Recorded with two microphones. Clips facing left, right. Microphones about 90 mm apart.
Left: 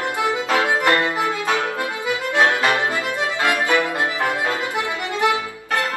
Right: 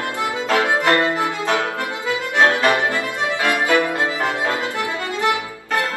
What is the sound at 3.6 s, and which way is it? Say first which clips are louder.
Music: right 2 dB; 20° right (ahead or behind).